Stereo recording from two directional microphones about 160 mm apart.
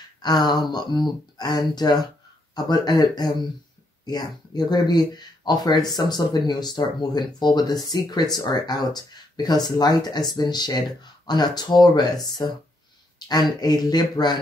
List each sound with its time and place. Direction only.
0.2 s speech: 25° left (ahead or behind)